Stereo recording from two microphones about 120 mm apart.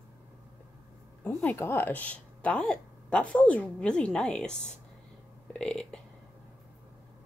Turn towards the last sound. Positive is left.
turn(degrees=5)  # may be behind; listen again after turning